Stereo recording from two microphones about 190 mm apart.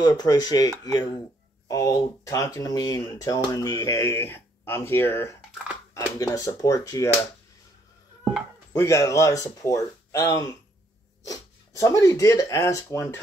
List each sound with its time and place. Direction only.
0.0 s speech: 20° left (ahead or behind)
8.2 s a sound: 5° right (ahead or behind)
8.7 s speech: 15° left (ahead or behind)